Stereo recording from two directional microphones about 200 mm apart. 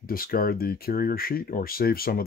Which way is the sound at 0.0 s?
45° left (ahead or behind).